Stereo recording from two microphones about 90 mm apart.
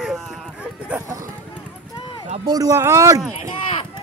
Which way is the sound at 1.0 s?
40° right (ahead or behind).